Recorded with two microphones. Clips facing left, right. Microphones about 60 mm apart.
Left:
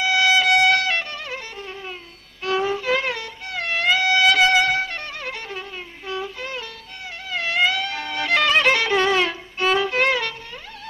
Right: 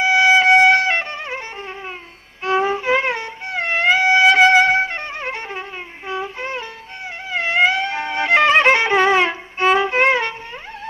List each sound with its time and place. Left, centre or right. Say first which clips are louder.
0.0 s music: right 5 dB; right